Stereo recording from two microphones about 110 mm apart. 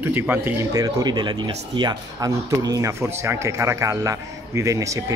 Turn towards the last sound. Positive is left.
turn(degrees=-30)  # may be behind; listen again after turning